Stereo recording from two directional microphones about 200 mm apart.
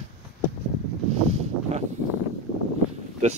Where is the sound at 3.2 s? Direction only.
35° right (ahead or behind).